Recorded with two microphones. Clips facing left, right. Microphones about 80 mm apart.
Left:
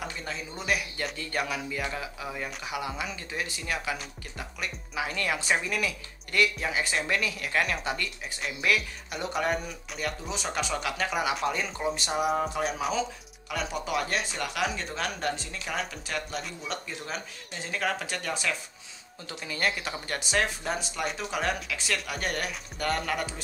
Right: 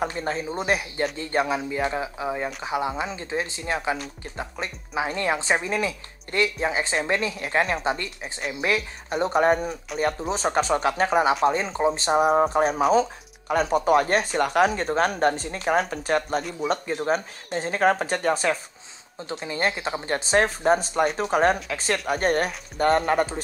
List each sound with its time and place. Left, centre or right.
0.0 s speech: right